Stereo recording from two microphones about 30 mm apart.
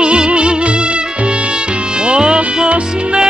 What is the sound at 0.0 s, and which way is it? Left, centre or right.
Music, right.